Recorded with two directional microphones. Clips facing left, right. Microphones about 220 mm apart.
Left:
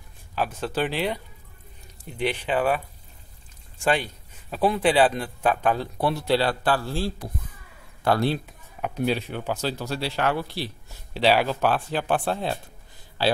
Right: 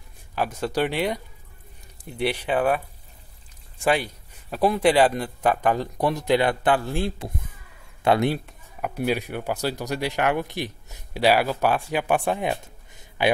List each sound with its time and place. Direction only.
0.4 s speech: 10° right (ahead or behind)
3.8 s speech: 10° right (ahead or behind)
8.5 s speech: 5° right (ahead or behind)